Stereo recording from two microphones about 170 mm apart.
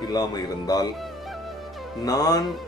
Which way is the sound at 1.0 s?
Centre (ahead or behind).